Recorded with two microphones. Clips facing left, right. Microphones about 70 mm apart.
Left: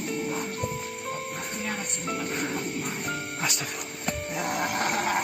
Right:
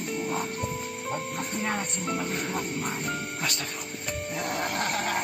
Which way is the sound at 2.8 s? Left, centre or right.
Centre.